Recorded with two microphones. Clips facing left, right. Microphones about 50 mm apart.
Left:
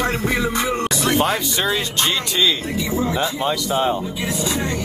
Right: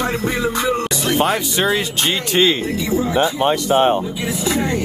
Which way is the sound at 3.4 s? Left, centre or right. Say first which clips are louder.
Right 5 dB; right.